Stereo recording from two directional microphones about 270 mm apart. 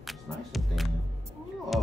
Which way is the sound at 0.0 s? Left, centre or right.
Centre.